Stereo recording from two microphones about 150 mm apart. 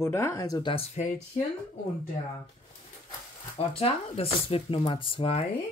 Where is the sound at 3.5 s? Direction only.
40° left (ahead or behind).